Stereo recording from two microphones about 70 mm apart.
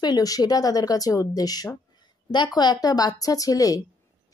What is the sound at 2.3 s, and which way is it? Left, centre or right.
Speech, left.